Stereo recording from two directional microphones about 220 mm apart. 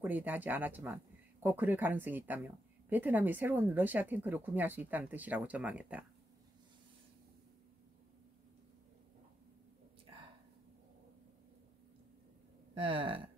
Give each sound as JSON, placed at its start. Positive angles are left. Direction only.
{"t": 0.0, "sound": "speech", "side_deg": -10}
{"t": 12.7, "sound": "speech", "side_deg": -25}